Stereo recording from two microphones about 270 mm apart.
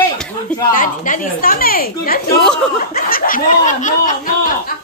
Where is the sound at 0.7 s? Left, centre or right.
Left.